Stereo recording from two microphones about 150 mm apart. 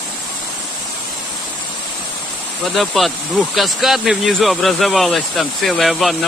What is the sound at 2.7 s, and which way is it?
Speech, centre (ahead or behind).